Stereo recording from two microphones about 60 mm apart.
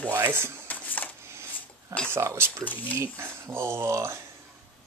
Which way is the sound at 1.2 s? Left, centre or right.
Right.